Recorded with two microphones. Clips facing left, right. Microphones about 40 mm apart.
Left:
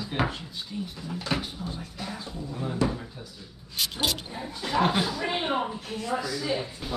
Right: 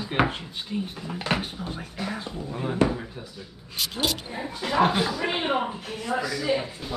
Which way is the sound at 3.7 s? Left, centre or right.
Centre.